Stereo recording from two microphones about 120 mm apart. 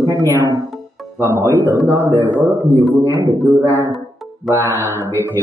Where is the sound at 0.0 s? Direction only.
25° right (ahead or behind).